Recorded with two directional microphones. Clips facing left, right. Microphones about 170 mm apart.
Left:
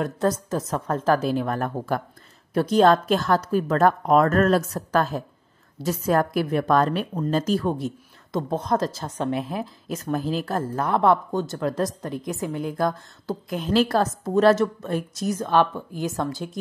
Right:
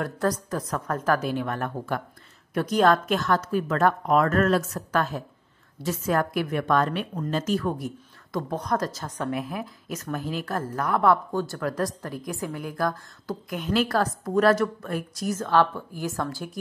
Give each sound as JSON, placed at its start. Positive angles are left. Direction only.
{"t": 0.0, "sound": "a woman's voice", "side_deg": 25}